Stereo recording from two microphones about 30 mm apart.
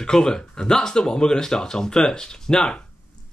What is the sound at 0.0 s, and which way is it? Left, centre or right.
Speech, left.